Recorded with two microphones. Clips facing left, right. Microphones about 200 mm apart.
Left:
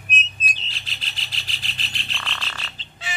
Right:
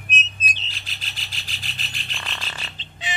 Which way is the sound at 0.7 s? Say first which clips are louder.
Left 1 dB; 45° right (ahead or behind).